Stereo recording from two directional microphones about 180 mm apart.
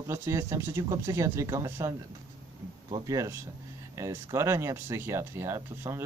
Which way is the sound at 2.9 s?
15° right (ahead or behind).